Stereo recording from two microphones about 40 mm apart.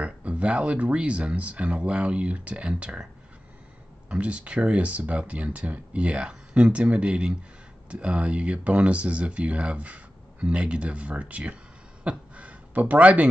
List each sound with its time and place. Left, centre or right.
0.0 s speech: right
4.1 s speech: right
12.0 s a sound: right
12.8 s speech: right